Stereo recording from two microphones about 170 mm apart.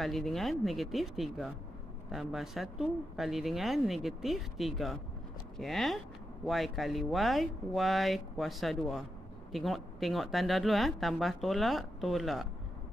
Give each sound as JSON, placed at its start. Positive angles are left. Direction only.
{"t": 0.0, "sound": "speech", "side_deg": 0}